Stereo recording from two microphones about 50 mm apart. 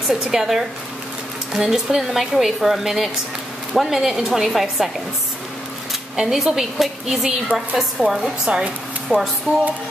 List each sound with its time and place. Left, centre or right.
0.1 s a woman's voice: centre
6.1 s a woman's voice: centre
8.5 s speech: centre
9.1 s a woman's voice: centre